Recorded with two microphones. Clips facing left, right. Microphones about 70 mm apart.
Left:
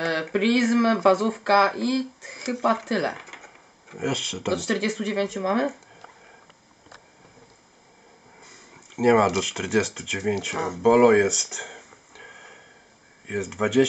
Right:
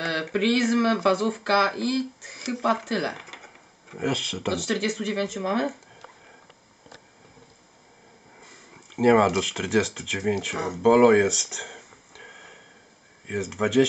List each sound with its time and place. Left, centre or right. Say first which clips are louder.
0.0 s a sound: left 2 dB; centre
0.6 s speech: left 3 dB; centre
0.8 s speech: left 3 dB; centre
1.1 s speech: left 2 dB; centre
1.4 s speech: left 3 dB; centre
2.5 s speech: left 2 dB; centre
4.6 s speech: left 1 dB; left
5.4 s a sound: left 2 dB; centre
8.4 s speech: even; centre